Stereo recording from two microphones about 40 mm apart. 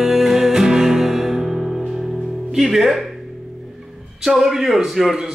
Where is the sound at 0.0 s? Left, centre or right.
Centre.